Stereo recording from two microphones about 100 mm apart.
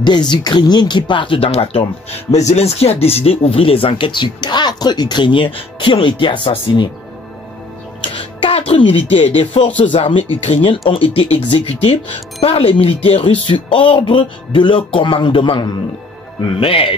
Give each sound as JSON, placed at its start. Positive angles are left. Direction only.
{"t": 0.0, "sound": "speech", "side_deg": 45}
{"t": 8.0, "sound": "a sound", "side_deg": 75}
{"t": 9.1, "sound": "speech", "side_deg": 70}
{"t": 10.4, "sound": "speech", "side_deg": 75}
{"t": 11.5, "sound": "speech", "side_deg": 85}